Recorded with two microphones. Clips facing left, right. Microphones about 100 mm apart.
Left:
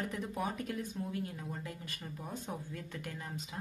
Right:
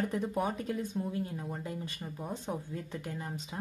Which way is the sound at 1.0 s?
30° right (ahead or behind).